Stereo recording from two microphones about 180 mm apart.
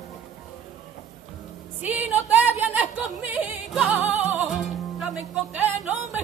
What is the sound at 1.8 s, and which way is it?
Music, 10° right (ahead or behind).